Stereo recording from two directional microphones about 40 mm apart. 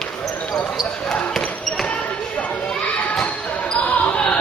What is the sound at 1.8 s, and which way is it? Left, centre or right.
Basketball bounce, left.